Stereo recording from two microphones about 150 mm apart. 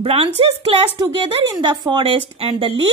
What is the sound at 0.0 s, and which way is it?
A woman's voice, 40° right (ahead or behind).